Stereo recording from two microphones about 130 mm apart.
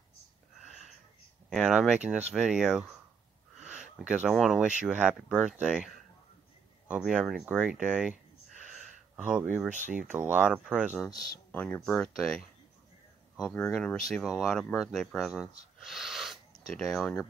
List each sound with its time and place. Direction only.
0.7 s a sound: centre (ahead or behind)
1.6 s speech: 5° right (ahead or behind)
4.0 s speech: 10° right (ahead or behind)
8.8 s a sound: 10° right (ahead or behind)
9.9 s speech: 15° right (ahead or behind)
11.5 s speech: 10° left (ahead or behind)